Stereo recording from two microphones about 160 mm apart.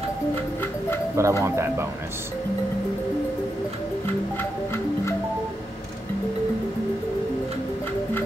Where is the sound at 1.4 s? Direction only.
15° right (ahead or behind).